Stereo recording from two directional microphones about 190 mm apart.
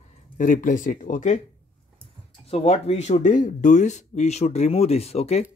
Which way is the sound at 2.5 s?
35° left (ahead or behind).